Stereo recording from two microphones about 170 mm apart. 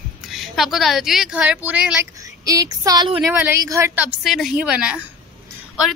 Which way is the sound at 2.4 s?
20° right (ahead or behind).